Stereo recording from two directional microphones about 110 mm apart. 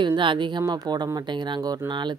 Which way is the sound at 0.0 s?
45° right (ahead or behind).